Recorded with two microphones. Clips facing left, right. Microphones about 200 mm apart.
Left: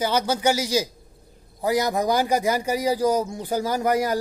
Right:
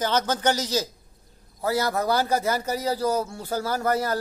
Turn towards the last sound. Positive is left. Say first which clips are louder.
# left 3 dB
turn(degrees=15)  # may be behind; listen again after turning